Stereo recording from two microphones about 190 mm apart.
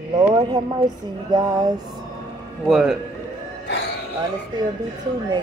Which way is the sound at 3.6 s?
65° left (ahead or behind).